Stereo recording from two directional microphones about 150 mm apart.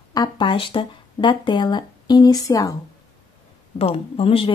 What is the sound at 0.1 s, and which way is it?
Speech, 30° left (ahead or behind).